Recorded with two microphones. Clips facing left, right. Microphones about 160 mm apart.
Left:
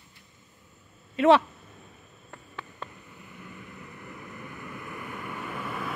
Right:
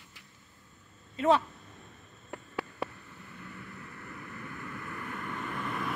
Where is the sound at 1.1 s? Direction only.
85° left.